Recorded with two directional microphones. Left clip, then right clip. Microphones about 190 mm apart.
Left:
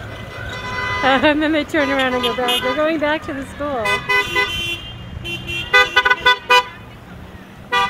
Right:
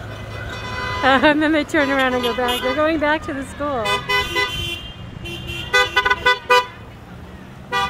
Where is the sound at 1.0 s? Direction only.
5° right (ahead or behind).